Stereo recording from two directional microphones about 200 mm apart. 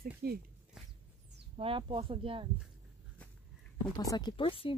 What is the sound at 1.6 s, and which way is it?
Speech, 25° right (ahead or behind).